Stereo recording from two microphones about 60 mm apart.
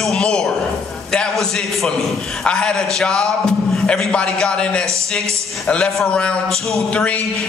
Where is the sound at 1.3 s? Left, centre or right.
Centre.